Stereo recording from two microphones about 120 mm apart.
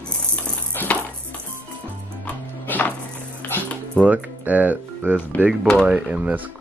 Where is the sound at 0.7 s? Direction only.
15° left (ahead or behind).